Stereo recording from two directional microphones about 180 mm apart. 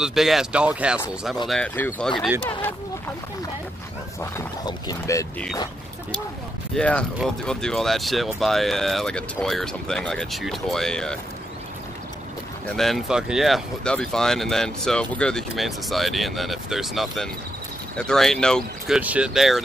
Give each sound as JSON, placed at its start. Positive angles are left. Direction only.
{"t": 0.0, "sound": "speech", "side_deg": 0}
{"t": 1.5, "sound": "speech", "side_deg": 10}
{"t": 4.2, "sound": "roaring cats", "side_deg": 20}
{"t": 6.7, "sound": "speech", "side_deg": 5}
{"t": 12.6, "sound": "speech", "side_deg": 0}
{"t": 18.9, "sound": "speech", "side_deg": -5}